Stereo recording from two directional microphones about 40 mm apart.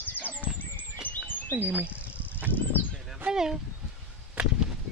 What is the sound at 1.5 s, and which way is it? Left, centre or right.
Speech, right.